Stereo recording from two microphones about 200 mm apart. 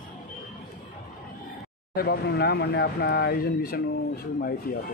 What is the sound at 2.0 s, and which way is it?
Speech, 55° left (ahead or behind).